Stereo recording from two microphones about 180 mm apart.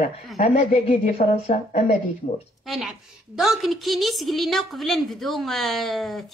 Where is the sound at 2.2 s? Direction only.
45° left (ahead or behind).